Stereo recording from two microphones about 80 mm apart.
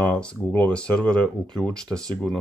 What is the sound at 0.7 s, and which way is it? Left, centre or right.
Speech, centre.